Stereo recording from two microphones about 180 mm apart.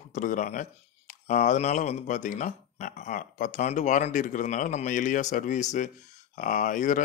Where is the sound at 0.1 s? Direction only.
45° left (ahead or behind).